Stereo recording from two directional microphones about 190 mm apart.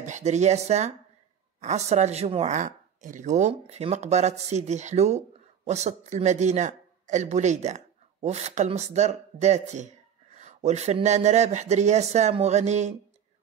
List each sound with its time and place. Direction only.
0.0 s a man's voice: 40° right (ahead or behind)